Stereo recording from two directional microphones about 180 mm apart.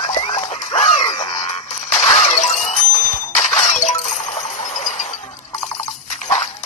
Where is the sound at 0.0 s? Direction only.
40° left (ahead or behind).